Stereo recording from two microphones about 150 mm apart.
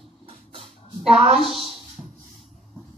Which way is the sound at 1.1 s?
40° right (ahead or behind).